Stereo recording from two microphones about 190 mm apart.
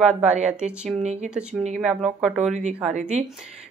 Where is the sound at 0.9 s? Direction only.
40° right (ahead or behind).